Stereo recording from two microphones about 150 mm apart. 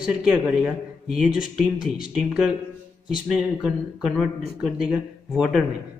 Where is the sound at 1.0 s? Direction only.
5° right (ahead or behind).